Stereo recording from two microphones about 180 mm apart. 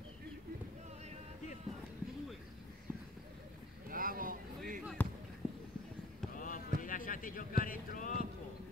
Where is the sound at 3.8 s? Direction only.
50° right (ahead or behind).